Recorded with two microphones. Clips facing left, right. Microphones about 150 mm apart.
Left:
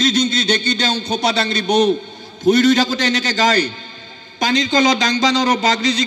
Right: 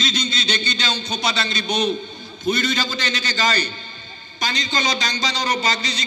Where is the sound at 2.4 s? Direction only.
75° left (ahead or behind).